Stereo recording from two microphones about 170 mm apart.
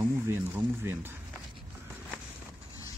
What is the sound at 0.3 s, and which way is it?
Speech, 15° right (ahead or behind).